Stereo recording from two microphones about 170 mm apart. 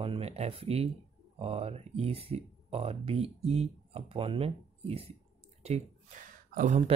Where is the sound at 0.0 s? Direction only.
35° right (ahead or behind).